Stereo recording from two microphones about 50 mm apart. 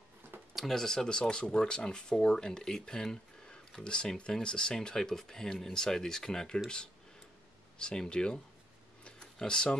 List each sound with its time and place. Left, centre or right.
0.6 s speech: centre
7.8 s speech: centre
9.0 s a sound: centre